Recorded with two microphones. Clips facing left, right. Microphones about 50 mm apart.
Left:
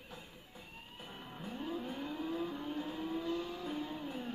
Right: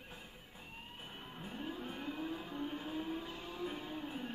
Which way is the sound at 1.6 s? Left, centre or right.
Right.